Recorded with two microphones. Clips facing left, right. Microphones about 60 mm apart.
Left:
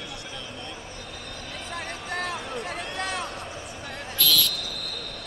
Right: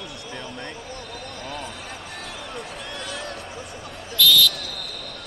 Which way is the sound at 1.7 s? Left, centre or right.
Left.